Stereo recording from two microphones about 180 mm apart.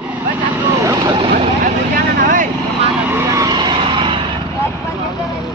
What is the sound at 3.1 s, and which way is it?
Vehicle, 15° right (ahead or behind).